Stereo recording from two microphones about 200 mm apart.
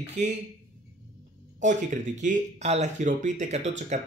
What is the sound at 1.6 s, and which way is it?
Speech, 40° right (ahead or behind).